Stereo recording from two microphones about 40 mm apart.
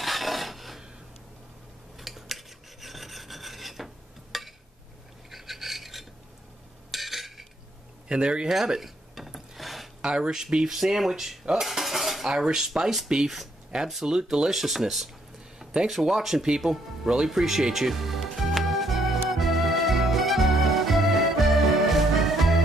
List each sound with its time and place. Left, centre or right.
0.0 s filing: centre
2.0 s filing: centre
5.3 s a sound: centre
8.1 s speech: right
8.7 s a sound: centre
10.0 s speech: centre
11.6 s cutlery: centre
13.2 s speech: centre
17.3 s music: centre